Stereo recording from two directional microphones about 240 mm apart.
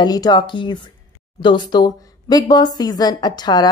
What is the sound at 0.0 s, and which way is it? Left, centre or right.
A woman's voice, centre.